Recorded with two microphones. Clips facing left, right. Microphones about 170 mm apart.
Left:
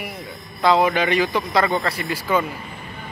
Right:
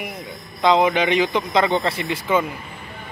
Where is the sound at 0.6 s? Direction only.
20° right (ahead or behind).